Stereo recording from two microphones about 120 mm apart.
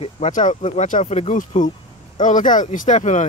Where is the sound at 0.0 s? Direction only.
80° left.